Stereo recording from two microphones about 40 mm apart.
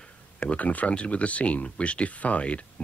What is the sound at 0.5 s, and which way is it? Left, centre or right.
Speech, left.